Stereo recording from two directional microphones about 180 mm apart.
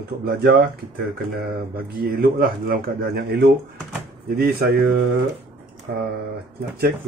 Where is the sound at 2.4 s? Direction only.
55° right (ahead or behind).